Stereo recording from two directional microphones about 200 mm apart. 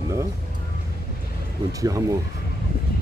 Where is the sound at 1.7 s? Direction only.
15° right (ahead or behind).